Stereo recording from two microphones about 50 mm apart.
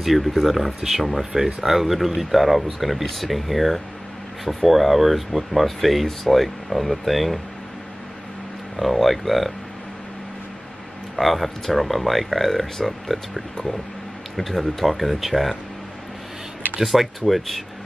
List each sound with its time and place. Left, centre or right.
0.0 s speech: centre
8.7 s speech: centre
11.1 s speech: centre
16.8 s speech: centre